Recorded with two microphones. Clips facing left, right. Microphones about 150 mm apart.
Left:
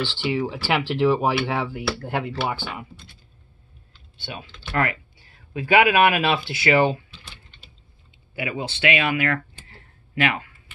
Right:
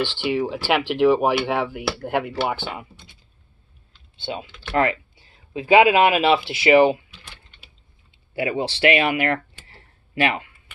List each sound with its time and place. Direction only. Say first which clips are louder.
0.0 s speech: right 2 dB; 15° right (ahead or behind)
4.7 s speech: right 4 dB; 25° right (ahead or behind)
8.4 s speech: right 5 dB; 30° right (ahead or behind)